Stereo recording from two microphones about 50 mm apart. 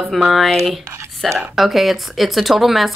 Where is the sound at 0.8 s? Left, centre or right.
Right.